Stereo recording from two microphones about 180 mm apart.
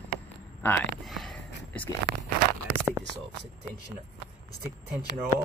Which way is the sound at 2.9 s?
25° right (ahead or behind).